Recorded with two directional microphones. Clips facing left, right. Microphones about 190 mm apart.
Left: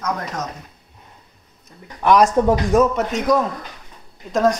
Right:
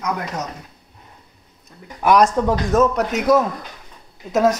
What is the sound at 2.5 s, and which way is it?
Speech, 15° left (ahead or behind).